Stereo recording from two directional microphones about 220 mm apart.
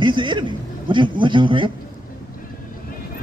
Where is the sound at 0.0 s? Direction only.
20° right (ahead or behind).